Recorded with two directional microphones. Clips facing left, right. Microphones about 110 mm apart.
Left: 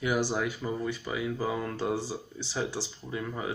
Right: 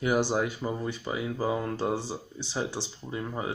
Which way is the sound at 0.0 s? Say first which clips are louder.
Right 3 dB; 25° right (ahead or behind).